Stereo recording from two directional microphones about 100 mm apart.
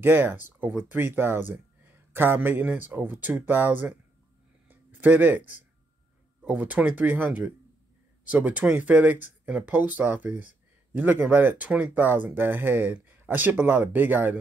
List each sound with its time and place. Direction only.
0.0 s speech: 20° right (ahead or behind)
4.6 s a sound: 20° right (ahead or behind)
6.4 s speech: 15° right (ahead or behind)